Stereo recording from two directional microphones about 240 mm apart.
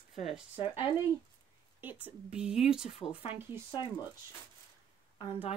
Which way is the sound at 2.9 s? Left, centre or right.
Left.